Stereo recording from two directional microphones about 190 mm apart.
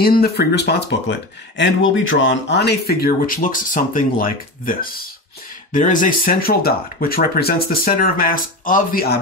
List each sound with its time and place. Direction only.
0.0 s speech: 55° left (ahead or behind)
1.6 s speech: 85° left; by 9.2 s 50° left (ahead or behind)